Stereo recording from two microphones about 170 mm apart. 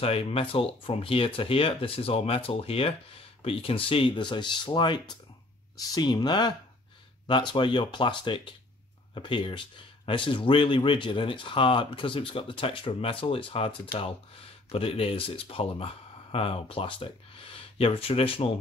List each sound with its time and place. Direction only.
0.0 s speech: 35° left (ahead or behind)